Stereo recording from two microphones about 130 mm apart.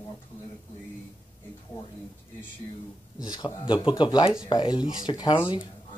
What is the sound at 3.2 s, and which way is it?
Speech, 30° left (ahead or behind).